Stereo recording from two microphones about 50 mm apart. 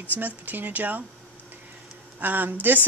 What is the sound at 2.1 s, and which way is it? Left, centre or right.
Speech, right.